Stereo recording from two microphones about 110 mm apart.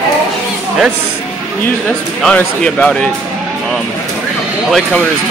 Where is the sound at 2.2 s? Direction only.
10° left (ahead or behind).